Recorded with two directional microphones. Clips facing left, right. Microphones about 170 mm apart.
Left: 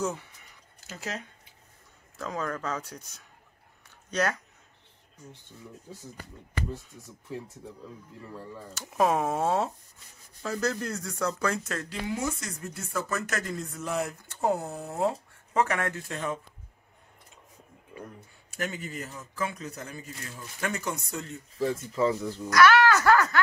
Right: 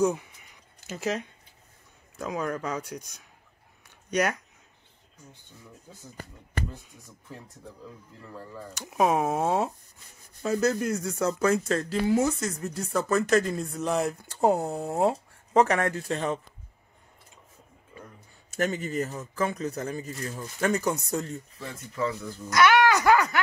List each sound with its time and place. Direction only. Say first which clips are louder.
0.0 s speech: right 7 dB; 15° right (ahead or behind)
2.1 s speech: right 3 dB; 15° right (ahead or behind)
4.1 s speech: right 2 dB; 15° right (ahead or behind)
8.7 s speech: right 1 dB; 15° right (ahead or behind)
10.4 s speech: right 5 dB; 20° right (ahead or behind)
13.3 s speech: right 10 dB; 20° right (ahead or behind)
13.7 s speech: right 5 dB; 35° right (ahead or behind)
18.6 s speech: right 7 dB; 40° right (ahead or behind)
21.5 s speech: left 7 dB; 30° left (ahead or behind)
22.5 s wail: even; 20° right (ahead or behind)